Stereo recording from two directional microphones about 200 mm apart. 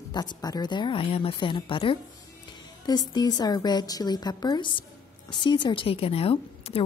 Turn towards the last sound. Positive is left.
turn(degrees=30)  # may be behind; listen again after turning